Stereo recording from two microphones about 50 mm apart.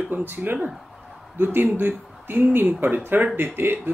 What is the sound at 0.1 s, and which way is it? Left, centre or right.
Speech, right.